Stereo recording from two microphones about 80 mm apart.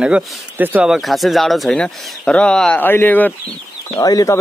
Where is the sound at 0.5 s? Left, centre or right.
Right.